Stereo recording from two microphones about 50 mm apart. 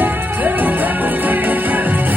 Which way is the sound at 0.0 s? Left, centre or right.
Right.